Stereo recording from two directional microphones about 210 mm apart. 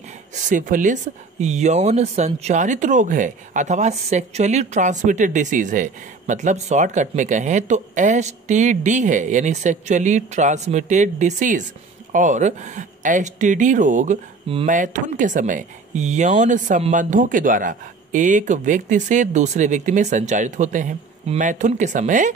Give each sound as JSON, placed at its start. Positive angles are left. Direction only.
{"t": 0.3, "sound": "speech", "side_deg": -40}